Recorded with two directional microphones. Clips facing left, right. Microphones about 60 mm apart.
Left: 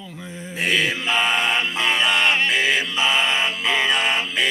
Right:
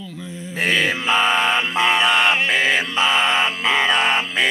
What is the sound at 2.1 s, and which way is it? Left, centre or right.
Music, centre.